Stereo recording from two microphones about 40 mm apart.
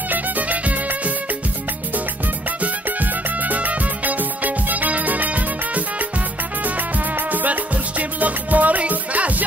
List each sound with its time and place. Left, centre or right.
0.1 s music: right
2.6 s music: right
7.2 s music: right